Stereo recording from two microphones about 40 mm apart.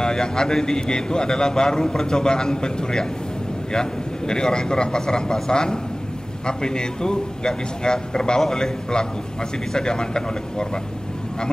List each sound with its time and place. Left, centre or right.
0.0 s a man's voice: centre
4.3 s a man's voice: centre